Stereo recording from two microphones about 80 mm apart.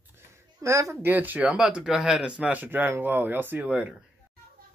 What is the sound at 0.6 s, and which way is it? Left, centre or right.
Speech, right.